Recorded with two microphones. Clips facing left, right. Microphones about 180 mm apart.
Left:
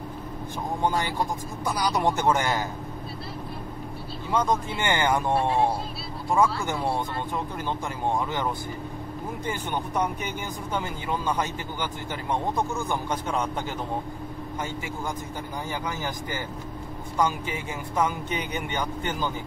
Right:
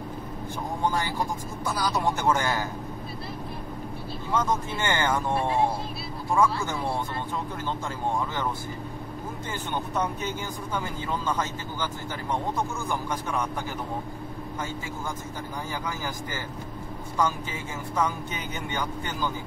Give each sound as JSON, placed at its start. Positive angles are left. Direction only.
{"t": 0.8, "sound": "speech", "side_deg": 20}
{"t": 4.3, "sound": "speech", "side_deg": 15}
{"t": 6.3, "sound": "speech", "side_deg": 15}
{"t": 9.5, "sound": "speech", "side_deg": 15}
{"t": 17.2, "sound": "speech", "side_deg": 15}